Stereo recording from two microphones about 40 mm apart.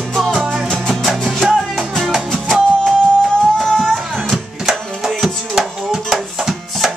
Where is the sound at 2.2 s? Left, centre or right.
Centre.